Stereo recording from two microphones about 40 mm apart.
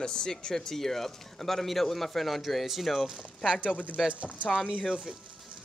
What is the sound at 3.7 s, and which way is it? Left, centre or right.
Speech, left.